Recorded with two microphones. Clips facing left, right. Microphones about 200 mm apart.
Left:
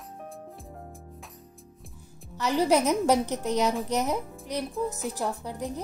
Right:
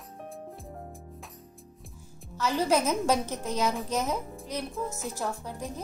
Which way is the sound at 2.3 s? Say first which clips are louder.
Left 3 dB; 15° left (ahead or behind).